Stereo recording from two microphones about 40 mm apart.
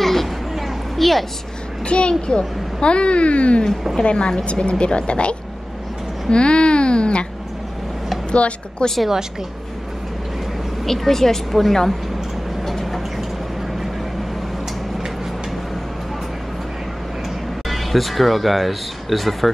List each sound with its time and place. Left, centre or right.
0.0 s a sound: centre
1.9 s speech: left
6.2 s a sound: left
8.3 s speech: left
10.9 s a woman's voice: centre
12.6 s vehicle: centre
17.6 s speech: centre